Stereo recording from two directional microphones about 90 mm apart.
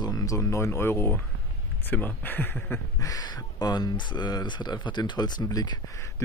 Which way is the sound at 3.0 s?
45° left (ahead or behind).